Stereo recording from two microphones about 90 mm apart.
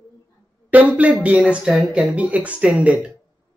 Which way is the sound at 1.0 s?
15° right (ahead or behind).